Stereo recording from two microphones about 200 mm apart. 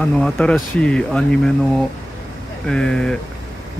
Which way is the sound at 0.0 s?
5° left (ahead or behind).